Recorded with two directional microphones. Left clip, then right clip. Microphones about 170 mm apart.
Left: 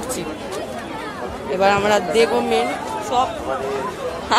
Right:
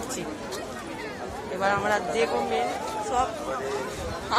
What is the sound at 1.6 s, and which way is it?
A man's voice, 40° left (ahead or behind).